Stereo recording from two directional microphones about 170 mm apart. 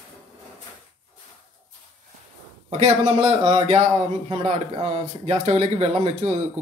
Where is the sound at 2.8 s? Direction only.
40° right (ahead or behind).